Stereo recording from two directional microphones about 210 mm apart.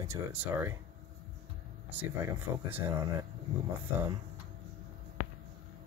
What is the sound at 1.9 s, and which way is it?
Speech, 10° right (ahead or behind).